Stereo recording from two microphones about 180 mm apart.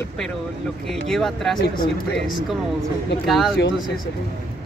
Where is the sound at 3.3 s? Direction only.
Centre (ahead or behind).